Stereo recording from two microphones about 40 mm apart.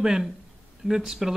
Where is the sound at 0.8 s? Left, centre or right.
Centre.